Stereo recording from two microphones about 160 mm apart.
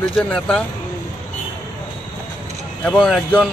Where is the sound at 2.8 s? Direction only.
5° left (ahead or behind).